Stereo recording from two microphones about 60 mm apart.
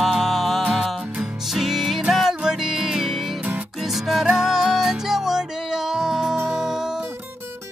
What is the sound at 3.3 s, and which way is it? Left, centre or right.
Music, right.